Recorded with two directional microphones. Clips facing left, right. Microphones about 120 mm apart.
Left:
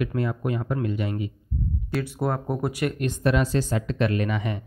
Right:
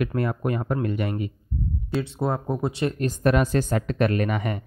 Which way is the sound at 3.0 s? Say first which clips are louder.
Right 2 dB; 45° right (ahead or behind).